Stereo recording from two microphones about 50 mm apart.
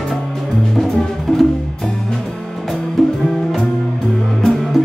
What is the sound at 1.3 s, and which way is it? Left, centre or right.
Music, left.